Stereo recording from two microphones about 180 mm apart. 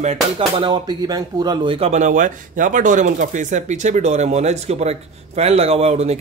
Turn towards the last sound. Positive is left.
turn(degrees=-35)  # may be behind; listen again after turning